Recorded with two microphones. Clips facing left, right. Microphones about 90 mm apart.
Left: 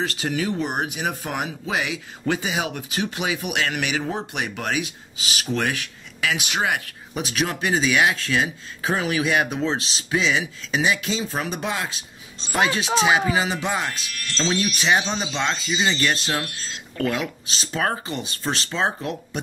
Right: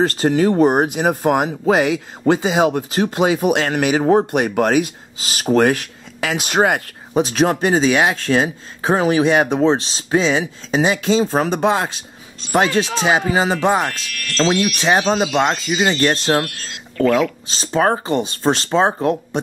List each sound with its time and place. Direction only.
0.0 s speech: 40° right (ahead or behind)
7.2 s speech: 35° right (ahead or behind)
14.0 s speech: 25° left (ahead or behind)
14.8 s speech: 35° right (ahead or behind)
16.4 s speech: 25° left (ahead or behind)
17.5 s speech: 30° right (ahead or behind)